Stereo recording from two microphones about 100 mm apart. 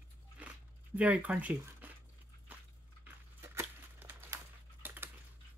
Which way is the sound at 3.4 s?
25° right (ahead or behind).